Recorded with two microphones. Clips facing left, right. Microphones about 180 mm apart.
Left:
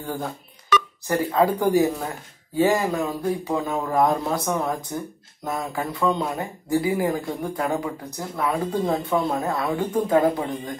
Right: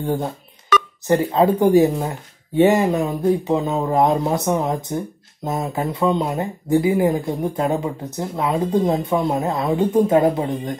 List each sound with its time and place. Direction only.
0.0 s speech: 25° right (ahead or behind)